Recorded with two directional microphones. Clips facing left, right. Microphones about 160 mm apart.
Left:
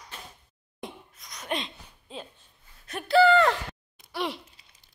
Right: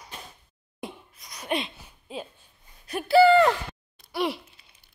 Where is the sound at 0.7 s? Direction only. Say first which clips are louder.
Right 2 dB; 5° right (ahead or behind).